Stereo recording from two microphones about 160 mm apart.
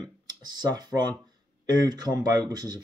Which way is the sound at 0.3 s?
25° right (ahead or behind).